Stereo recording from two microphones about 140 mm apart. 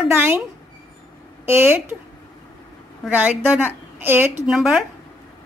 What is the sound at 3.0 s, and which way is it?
A woman's voice, 10° right (ahead or behind).